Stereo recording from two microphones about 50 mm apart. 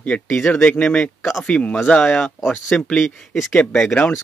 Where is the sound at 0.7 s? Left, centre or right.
Centre.